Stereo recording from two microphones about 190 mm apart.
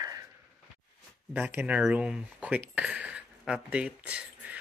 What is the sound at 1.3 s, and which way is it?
Speech, 10° right (ahead or behind).